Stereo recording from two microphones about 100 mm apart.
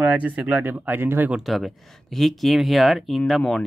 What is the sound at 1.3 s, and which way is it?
Speech, centre (ahead or behind).